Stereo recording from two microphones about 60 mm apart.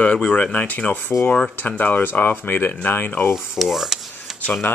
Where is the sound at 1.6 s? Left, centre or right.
Left.